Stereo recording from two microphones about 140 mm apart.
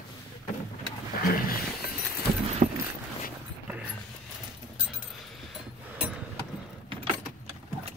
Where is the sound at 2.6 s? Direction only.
85° right.